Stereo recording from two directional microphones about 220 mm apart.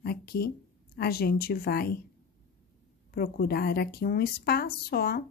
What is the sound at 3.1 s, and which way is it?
Speech, 45° left (ahead or behind).